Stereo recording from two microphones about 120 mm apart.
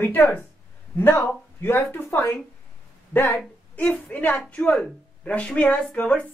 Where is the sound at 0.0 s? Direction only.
15° left (ahead or behind).